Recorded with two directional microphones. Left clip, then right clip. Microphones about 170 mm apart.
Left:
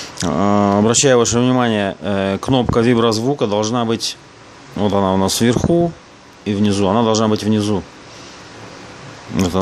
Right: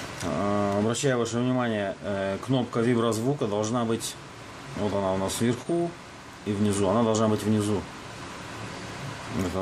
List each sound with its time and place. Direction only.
0.2 s speech: 55° left (ahead or behind)